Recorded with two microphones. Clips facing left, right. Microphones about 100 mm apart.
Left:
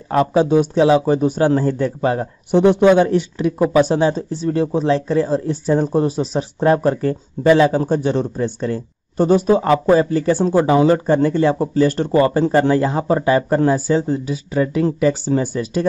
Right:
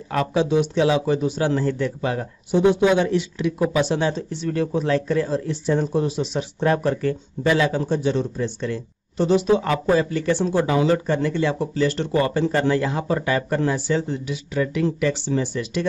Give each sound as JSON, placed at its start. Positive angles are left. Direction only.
{"t": 0.1, "sound": "speech", "side_deg": 35}
{"t": 2.5, "sound": "speech", "side_deg": 60}